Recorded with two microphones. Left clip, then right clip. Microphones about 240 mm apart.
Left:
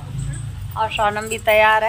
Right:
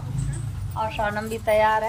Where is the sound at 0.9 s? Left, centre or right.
Centre.